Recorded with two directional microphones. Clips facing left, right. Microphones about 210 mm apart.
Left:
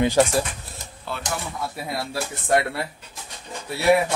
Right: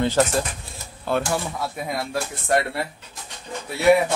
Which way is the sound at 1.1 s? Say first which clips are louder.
Right 10 dB; 50° right (ahead or behind).